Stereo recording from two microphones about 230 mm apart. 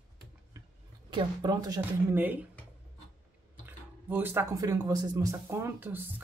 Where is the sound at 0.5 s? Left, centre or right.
Centre.